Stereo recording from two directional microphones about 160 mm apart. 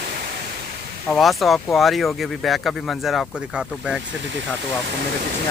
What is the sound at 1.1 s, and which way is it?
Speech, centre (ahead or behind).